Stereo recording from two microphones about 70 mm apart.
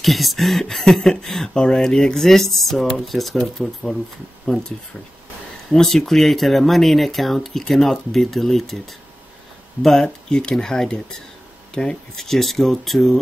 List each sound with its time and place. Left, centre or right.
0.0 s speech: centre
4.5 s speech: centre
5.7 s speech: centre
9.8 s speech: centre